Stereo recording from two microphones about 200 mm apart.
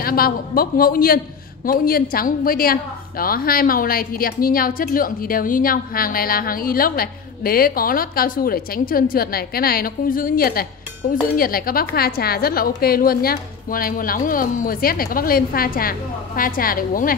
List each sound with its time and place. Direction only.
0.0 s a woman's voice: 45° left (ahead or behind)